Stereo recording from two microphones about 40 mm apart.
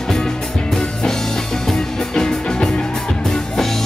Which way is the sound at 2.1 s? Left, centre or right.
Centre.